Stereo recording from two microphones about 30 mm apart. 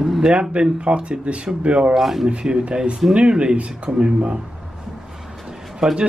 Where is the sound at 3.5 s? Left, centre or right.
Right.